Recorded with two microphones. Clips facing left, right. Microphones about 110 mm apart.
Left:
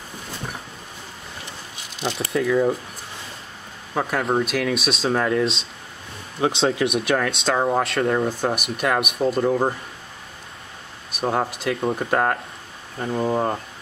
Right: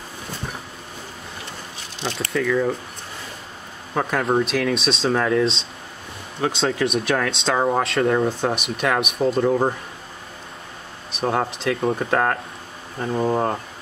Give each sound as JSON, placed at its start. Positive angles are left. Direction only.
{"t": 2.0, "sound": "speech", "side_deg": 10}
{"t": 2.3, "sound": "speech", "side_deg": 20}
{"t": 3.9, "sound": "speech", "side_deg": 0}
{"t": 11.1, "sound": "speech", "side_deg": 5}
{"t": 13.0, "sound": "speech", "side_deg": -5}